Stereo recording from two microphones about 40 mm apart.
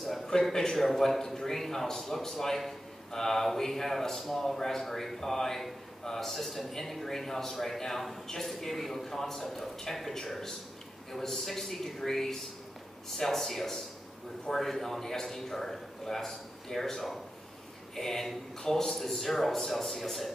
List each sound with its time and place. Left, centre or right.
0.3 s a man's voice: centre